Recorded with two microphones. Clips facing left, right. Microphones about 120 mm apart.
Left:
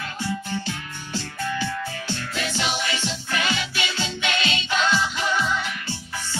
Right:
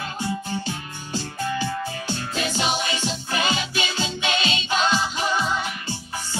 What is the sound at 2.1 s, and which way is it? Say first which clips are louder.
Music: right 3 dB; 20° right (ahead or behind).